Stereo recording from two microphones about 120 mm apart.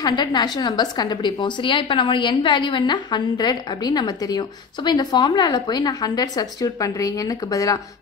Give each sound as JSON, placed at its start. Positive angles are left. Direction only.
{"t": 0.0, "sound": "a woman's voice", "side_deg": 40}